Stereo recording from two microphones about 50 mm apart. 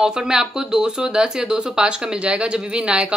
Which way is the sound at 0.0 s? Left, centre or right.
Centre.